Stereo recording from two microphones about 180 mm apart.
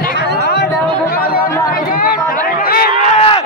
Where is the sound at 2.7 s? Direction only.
55° left (ahead or behind).